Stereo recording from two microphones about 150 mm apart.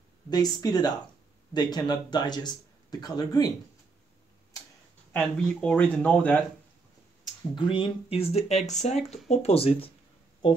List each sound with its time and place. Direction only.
0.3 s speech: 25° left (ahead or behind)
5.1 s speech: 10° left (ahead or behind)
7.5 s speech: 35° left (ahead or behind)